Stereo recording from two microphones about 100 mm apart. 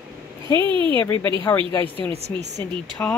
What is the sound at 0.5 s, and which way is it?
Speech, 55° right (ahead or behind).